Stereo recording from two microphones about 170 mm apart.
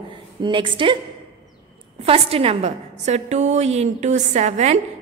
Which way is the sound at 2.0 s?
35° right (ahead or behind).